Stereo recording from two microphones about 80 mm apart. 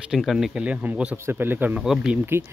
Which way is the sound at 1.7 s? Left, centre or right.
Centre.